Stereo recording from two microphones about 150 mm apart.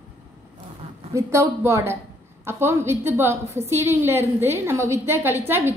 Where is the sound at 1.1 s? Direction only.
20° right (ahead or behind).